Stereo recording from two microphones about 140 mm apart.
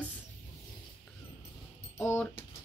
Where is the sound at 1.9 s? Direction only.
15° left (ahead or behind).